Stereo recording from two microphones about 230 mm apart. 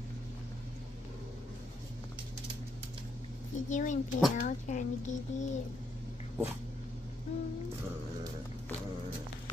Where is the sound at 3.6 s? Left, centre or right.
Left.